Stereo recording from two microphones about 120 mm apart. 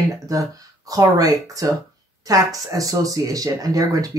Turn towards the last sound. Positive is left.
turn(degrees=-30)  # may be behind; listen again after turning